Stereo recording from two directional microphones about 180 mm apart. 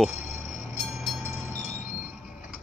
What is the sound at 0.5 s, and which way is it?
Train, centre (ahead or behind).